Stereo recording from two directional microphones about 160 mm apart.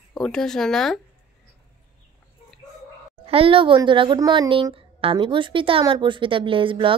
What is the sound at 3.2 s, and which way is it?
A woman's voice, 35° right (ahead or behind).